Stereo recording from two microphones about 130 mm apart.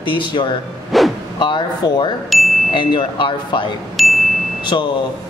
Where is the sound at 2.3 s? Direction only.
Centre (ahead or behind).